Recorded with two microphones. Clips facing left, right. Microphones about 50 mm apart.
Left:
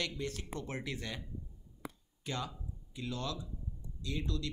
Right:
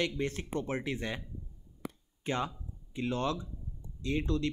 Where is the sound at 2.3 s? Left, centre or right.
Right.